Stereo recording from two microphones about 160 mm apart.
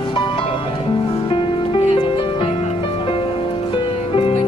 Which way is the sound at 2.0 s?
35° left (ahead or behind).